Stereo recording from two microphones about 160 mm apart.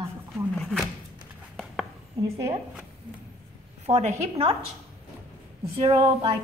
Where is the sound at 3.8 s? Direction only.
45° right (ahead or behind).